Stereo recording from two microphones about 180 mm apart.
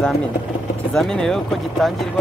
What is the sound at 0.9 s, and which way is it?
Speech, 5° left (ahead or behind).